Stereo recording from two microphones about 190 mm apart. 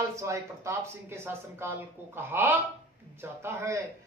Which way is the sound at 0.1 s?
15° right (ahead or behind).